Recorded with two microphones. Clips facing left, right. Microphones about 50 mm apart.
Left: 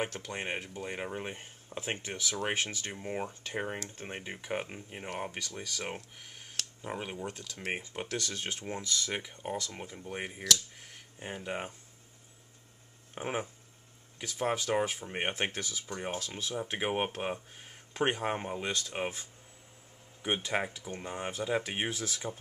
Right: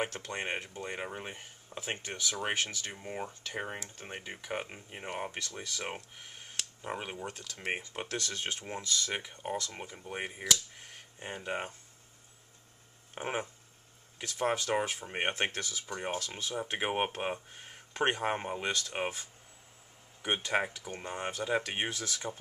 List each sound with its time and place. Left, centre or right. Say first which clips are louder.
0.3 s speech: even; centre
3.1 s speech: left 4 dB; centre
9.2 s speech: even; centre
13.1 s speech: even; centre
15.8 s speech: right 2 dB; centre
18.7 s speech: right 2 dB; centre
20.5 s speech: right 2 dB; centre